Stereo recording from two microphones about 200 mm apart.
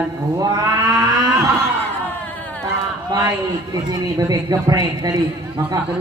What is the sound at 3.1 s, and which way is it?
A man's voice, 20° right (ahead or behind).